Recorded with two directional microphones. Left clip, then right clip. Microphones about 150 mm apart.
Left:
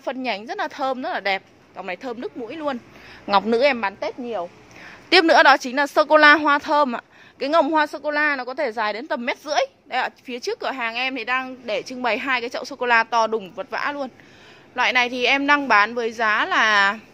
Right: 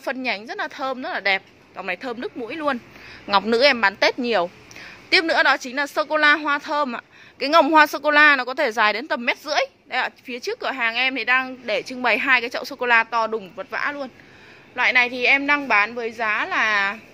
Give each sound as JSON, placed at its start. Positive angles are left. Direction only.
{"t": 0.0, "sound": "a woman's voice", "side_deg": 10}
{"t": 3.3, "sound": "a woman's voice", "side_deg": 15}
{"t": 4.2, "sound": "a woman's voice", "side_deg": -30}
{"t": 5.1, "sound": "a woman's voice", "side_deg": 35}
{"t": 7.6, "sound": "a woman's voice", "side_deg": 0}